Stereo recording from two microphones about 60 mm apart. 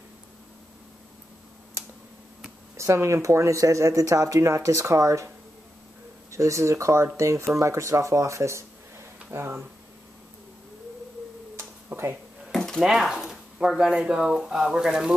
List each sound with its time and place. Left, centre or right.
2.8 s speech: right
6.3 s speech: right
11.9 s speech: right
12.4 s a sound: centre
12.8 s speech: centre